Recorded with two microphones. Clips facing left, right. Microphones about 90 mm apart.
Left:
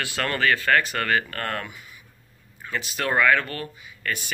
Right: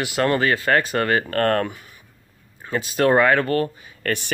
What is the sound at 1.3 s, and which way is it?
Speech, 50° right (ahead or behind).